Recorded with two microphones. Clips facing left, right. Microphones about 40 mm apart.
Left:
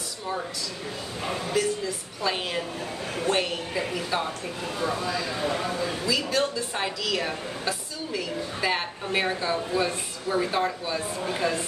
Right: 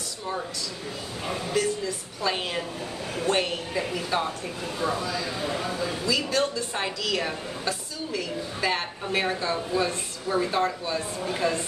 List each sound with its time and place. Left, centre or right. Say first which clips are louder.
1.2 s speech: even; centre
2.2 s a woman's voice: even; centre
5.4 s speech: left 2 dB; left
6.0 s a woman's voice: right 1 dB; centre